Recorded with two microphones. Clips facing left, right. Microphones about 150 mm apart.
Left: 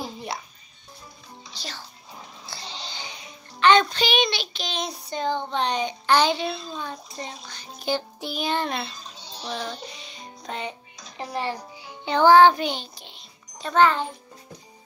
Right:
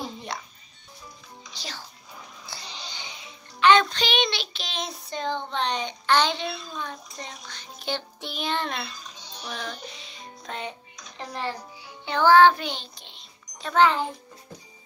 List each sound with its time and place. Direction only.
0.0 s music: 10° left (ahead or behind)
3.5 s music: 5° right (ahead or behind)
3.9 s a child's voice: 5° left (ahead or behind)
6.5 s a child's voice: 30° left (ahead or behind)
7.4 s a child's voice: 5° left (ahead or behind)
8.8 s child singing: 30° left (ahead or behind)
9.9 s music: centre (ahead or behind)
10.5 s a child's voice: 5° left (ahead or behind)
12.0 s music: 20° left (ahead or behind); by 13.7 s 5° left (ahead or behind)
13.7 s a child's voice: 5° right (ahead or behind)